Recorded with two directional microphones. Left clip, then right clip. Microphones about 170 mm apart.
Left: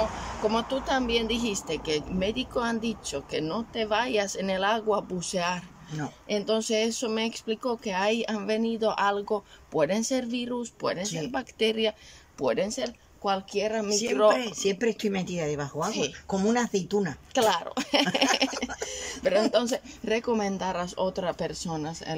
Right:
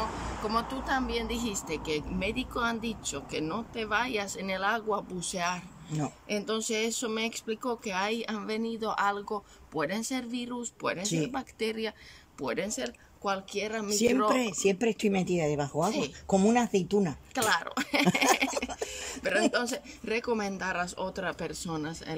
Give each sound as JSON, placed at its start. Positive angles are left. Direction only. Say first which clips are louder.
{"t": 0.5, "sound": "speech", "louder": "left 3 dB", "side_deg": 15}
{"t": 11.0, "sound": "speech", "louder": "right 1 dB", "side_deg": -20}
{"t": 11.3, "sound": "speech", "louder": "left 6 dB", "side_deg": 15}
{"t": 13.8, "sound": "speech", "louder": "left 3 dB", "side_deg": -25}
{"t": 17.3, "sound": "speech", "louder": "left 5 dB", "side_deg": 15}
{"t": 18.5, "sound": "speech", "louder": "even", "side_deg": -15}
{"t": 19.5, "sound": "speech", "louder": "left 5 dB", "side_deg": 15}